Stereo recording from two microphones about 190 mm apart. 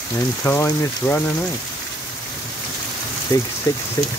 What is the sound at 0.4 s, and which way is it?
Speech, 15° left (ahead or behind).